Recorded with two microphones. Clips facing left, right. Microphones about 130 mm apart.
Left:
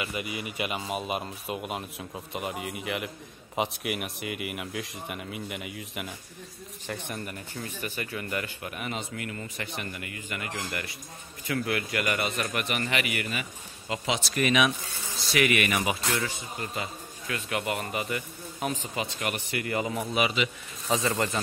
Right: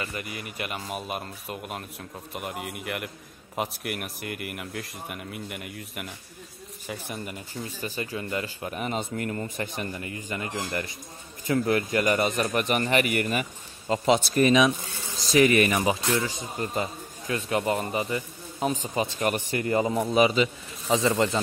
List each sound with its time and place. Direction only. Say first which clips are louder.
0.0 s speech: left 1 dB; 15° left (ahead or behind); by 7.2 s 5° right (ahead or behind)
7.2 s speech: right 2 dB; 20° right (ahead or behind)
7.7 s a man's voice: right 3 dB; 35° right (ahead or behind)
20.9 s speech: right 4 dB; 20° right (ahead or behind)